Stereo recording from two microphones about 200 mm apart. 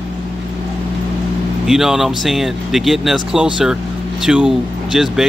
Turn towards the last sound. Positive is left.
turn(degrees=0)  # may be behind; listen again after turning